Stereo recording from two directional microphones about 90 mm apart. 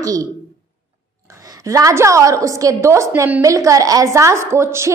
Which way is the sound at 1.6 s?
40° right (ahead or behind).